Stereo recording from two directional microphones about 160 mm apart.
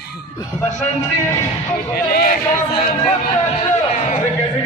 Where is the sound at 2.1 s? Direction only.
70° left (ahead or behind).